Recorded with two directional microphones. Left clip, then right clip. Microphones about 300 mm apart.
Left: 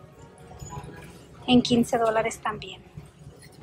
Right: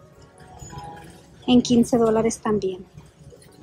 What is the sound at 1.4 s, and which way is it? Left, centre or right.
A woman's voice, centre.